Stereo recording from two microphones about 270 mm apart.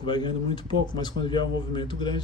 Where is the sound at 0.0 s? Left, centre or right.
Centre.